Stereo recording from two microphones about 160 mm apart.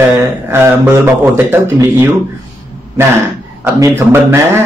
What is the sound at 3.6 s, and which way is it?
Speech, 15° right (ahead or behind).